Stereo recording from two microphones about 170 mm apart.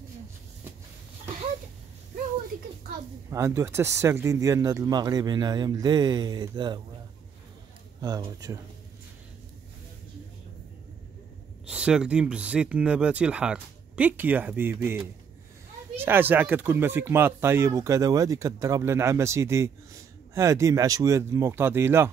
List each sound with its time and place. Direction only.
3.3 s speech: 15° right (ahead or behind)
8.0 s speech: 20° right (ahead or behind)
11.6 s speech: 5° right (ahead or behind)